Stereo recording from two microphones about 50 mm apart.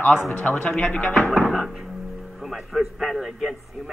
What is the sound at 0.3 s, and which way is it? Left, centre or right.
Speech, left.